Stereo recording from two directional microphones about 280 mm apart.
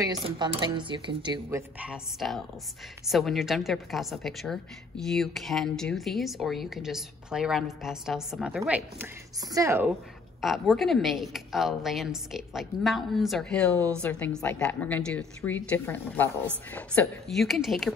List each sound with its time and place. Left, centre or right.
0.0 s speech: centre
1.8 s a woman's voice: centre